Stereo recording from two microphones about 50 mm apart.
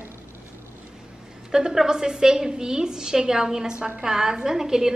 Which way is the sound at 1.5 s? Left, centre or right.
Centre.